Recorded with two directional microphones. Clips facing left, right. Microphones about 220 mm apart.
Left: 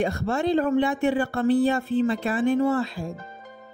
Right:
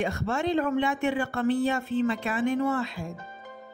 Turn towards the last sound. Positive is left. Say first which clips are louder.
# left 4 dB
turn(degrees=35)  # may be behind; listen again after turning